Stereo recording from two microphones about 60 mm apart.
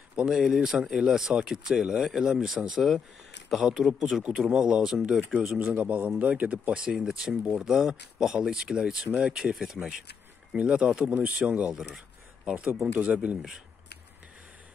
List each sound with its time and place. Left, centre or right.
0.1 s speech: centre
5.5 s a man's voice: right; by 9.9 s centre
10.5 s a man's voice: centre